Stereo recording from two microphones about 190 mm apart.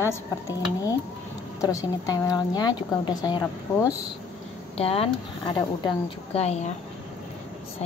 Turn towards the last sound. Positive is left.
turn(degrees=35)  # may be behind; listen again after turning